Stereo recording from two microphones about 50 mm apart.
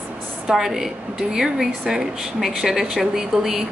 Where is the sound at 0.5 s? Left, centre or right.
Centre.